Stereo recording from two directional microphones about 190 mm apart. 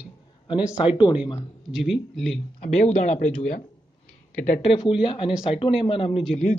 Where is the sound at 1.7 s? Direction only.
Centre (ahead or behind).